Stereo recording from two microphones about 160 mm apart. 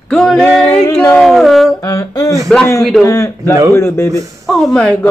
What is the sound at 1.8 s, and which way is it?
Speech, 20° left (ahead or behind).